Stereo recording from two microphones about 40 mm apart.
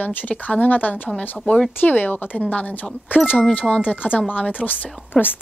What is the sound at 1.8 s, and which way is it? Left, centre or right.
Speech, left.